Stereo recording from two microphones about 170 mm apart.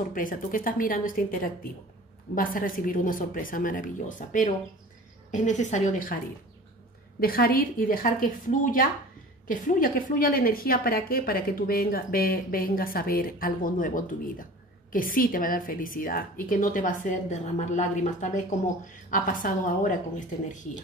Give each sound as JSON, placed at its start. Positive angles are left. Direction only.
{"t": 0.1, "sound": "a woman's voice", "side_deg": 55}
{"t": 7.2, "sound": "a woman's voice", "side_deg": 60}